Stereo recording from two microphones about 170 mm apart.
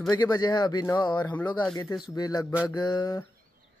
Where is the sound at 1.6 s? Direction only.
25° left (ahead or behind).